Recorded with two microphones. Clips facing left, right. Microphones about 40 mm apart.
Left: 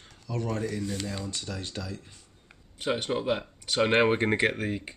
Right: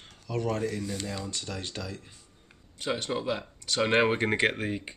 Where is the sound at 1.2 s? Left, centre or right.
Left.